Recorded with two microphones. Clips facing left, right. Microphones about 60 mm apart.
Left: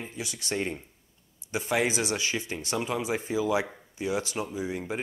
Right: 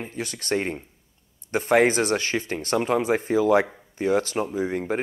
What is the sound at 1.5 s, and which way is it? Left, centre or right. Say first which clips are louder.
Speech: right 8 dB; right.